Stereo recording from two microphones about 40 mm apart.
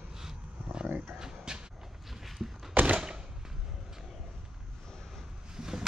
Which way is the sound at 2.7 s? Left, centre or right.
Right.